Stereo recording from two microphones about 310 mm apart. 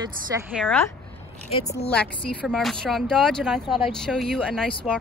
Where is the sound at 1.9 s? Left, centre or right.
Centre.